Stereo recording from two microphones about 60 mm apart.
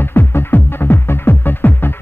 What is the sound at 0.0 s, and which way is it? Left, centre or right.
Music, left.